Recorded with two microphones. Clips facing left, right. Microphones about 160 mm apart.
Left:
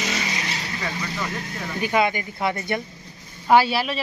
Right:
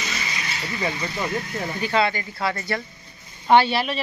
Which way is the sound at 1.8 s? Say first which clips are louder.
Left 1 dB; 15° left (ahead or behind).